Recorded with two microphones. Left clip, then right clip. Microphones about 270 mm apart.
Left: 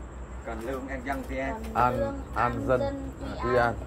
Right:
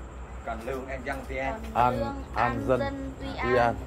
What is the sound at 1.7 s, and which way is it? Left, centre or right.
Speech, centre.